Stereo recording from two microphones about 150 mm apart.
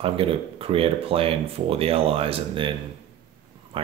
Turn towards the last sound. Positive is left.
turn(degrees=-35)  # may be behind; listen again after turning